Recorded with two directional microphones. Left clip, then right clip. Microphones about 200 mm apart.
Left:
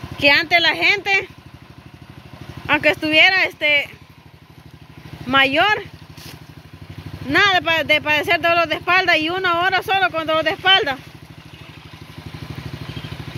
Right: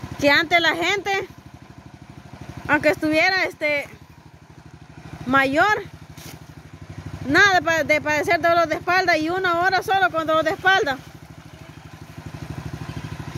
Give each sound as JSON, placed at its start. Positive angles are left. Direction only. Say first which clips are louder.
{"t": 0.2, "sound": "speech", "louder": "left 3 dB", "side_deg": -25}
{"t": 2.6, "sound": "speech", "louder": "left 2 dB", "side_deg": -20}
{"t": 5.2, "sound": "speech", "louder": "left 3 dB", "side_deg": -15}
{"t": 7.2, "sound": "speech", "louder": "left 1 dB", "side_deg": -20}